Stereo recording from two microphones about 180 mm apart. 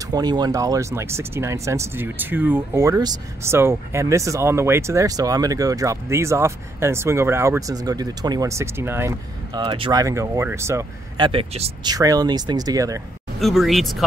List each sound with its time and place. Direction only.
0.0 s speech: 20° right (ahead or behind)
11.9 s speech: 20° right (ahead or behind)
13.4 s speech: centre (ahead or behind)